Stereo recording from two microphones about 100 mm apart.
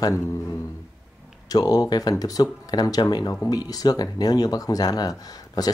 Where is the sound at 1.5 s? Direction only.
40° left (ahead or behind).